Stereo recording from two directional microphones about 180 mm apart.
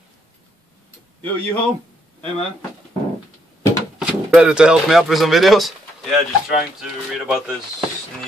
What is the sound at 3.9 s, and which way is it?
Speech, 5° right (ahead or behind).